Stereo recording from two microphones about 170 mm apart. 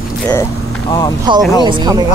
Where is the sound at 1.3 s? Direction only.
30° right (ahead or behind).